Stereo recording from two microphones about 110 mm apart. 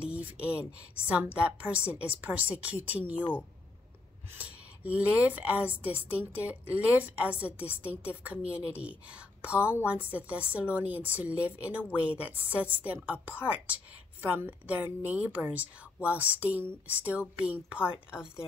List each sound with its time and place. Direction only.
0.1 s a woman's voice: 10° right (ahead or behind)
4.4 s a woman's voice: 15° right (ahead or behind)